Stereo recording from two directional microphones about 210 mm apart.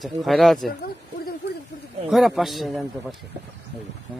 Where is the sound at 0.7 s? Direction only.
45° left (ahead or behind).